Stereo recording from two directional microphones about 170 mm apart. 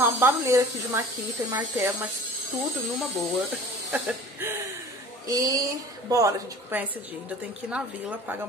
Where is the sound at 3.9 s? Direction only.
10° right (ahead or behind).